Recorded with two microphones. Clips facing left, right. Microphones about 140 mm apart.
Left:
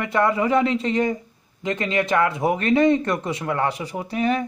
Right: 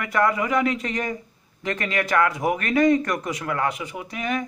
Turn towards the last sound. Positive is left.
turn(degrees=35)  # may be behind; listen again after turning